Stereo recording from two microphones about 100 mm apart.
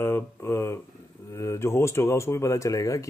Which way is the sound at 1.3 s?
30° left (ahead or behind).